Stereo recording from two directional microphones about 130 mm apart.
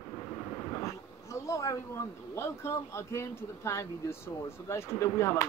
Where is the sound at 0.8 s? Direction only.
25° left (ahead or behind).